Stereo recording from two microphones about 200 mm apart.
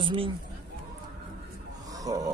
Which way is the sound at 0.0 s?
25° right (ahead or behind).